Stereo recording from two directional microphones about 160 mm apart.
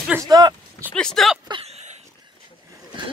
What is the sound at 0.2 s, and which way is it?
Speech, 25° right (ahead or behind).